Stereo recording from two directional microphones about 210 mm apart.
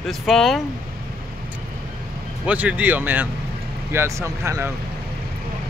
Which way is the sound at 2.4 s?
5° right (ahead or behind).